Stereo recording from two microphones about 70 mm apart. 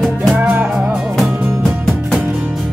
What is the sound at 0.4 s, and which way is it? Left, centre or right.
Music, right.